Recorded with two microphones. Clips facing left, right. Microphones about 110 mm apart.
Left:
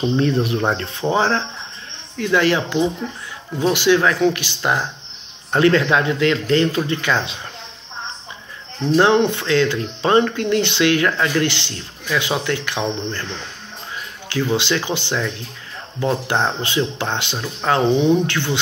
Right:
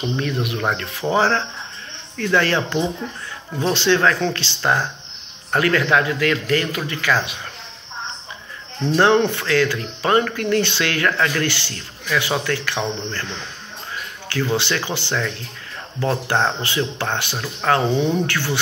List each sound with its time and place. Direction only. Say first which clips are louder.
0.0 s speech: left 5 dB; 30° left (ahead or behind)
1.0 s speech: even; 15° left (ahead or behind)
8.9 s speech: left 1 dB; 15° left (ahead or behind)
14.5 s speech: left 3 dB; 15° left (ahead or behind)